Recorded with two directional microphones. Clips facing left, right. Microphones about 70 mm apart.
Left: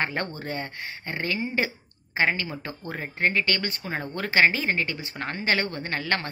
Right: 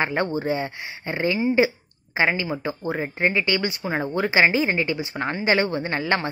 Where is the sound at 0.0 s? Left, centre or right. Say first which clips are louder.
Right 6 dB; centre.